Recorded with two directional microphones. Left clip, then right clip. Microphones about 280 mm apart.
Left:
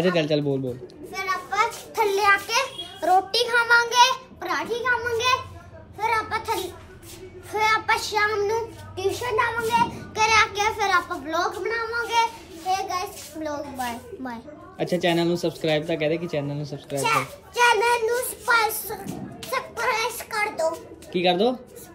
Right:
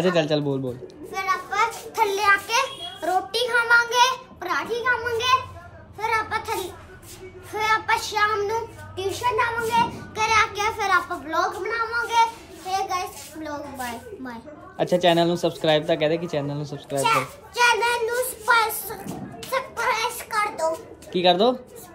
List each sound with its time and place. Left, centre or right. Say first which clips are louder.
0.0 s children playing: right 1 dB; centre
5.9 s a sound: even; centre
7.5 s a child's voice: left 1 dB; centre
15.6 s speech: right 4 dB; left
16.4 s children playing: right 1 dB; centre
21.3 s a child's voice: right 3 dB; centre